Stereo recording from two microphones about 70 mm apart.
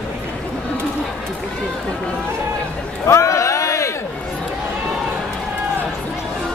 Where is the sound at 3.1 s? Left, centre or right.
Left.